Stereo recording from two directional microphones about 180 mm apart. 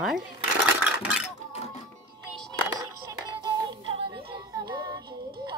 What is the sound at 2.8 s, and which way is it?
Music, 20° right (ahead or behind).